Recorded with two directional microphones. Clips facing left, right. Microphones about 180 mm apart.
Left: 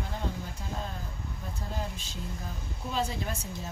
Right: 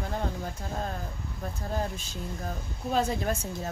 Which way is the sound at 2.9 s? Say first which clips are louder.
Right 5 dB; 50° right (ahead or behind).